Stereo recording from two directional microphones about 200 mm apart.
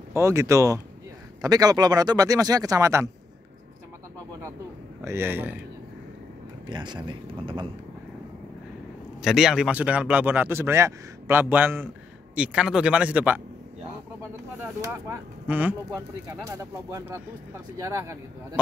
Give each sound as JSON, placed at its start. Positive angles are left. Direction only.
{"t": 0.1, "sound": "speech", "side_deg": -15}
{"t": 5.0, "sound": "speech", "side_deg": -10}
{"t": 6.7, "sound": "speech", "side_deg": -20}
{"t": 9.2, "sound": "speech", "side_deg": 0}
{"t": 14.6, "sound": "speech", "side_deg": -10}